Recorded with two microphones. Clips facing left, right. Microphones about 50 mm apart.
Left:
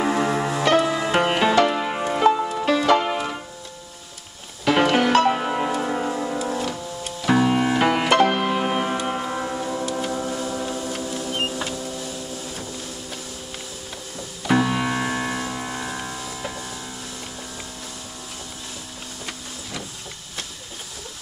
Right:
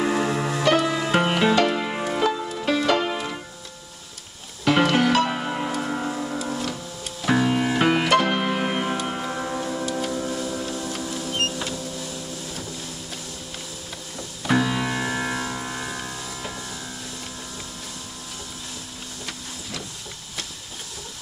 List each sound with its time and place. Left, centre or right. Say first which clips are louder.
0.0 s music: left 1 dB; centre
2.2 s music: left 9 dB; left
2.6 s music: left 2 dB; centre
4.6 s music: left 1 dB; centre
10.0 s a sound: left 1 dB; centre
14.5 s music: left 2 dB; centre